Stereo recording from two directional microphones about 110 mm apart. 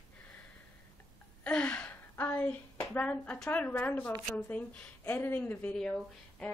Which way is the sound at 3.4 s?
15° left (ahead or behind).